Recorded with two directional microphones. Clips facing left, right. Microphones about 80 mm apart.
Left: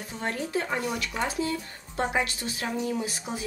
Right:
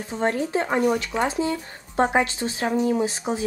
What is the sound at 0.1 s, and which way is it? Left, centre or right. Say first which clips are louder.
Speech: right 7 dB; right.